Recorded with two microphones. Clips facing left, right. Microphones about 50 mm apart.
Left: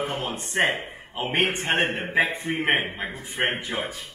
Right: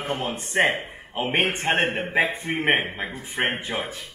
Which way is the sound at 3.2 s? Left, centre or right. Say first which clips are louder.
Even; right.